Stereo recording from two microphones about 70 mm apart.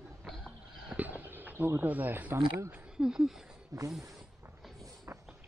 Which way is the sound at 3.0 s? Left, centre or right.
Centre.